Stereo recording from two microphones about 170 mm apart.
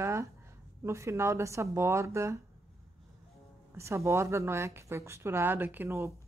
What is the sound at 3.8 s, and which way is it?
Speech, 15° right (ahead or behind).